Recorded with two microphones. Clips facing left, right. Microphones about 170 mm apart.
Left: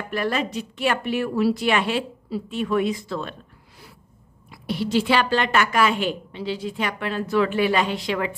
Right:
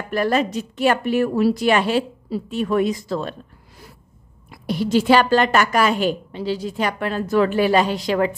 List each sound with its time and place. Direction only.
0.1 s a woman's voice: 40° right (ahead or behind)
4.5 s a woman's voice: 45° right (ahead or behind)